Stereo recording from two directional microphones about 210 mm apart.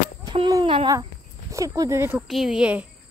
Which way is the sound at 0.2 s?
20° right (ahead or behind).